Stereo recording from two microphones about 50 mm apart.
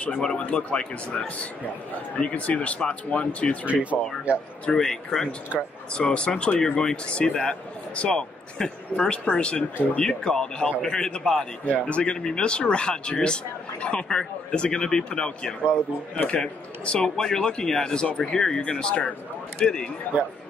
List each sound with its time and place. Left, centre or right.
0.1 s speech: centre
0.4 s speech: left
3.6 s speech: right
4.7 s speech: centre
5.9 s speech: centre